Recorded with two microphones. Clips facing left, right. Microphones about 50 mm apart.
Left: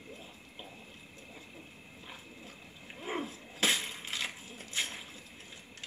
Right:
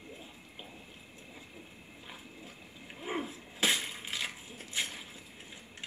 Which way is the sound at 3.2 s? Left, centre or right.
Centre.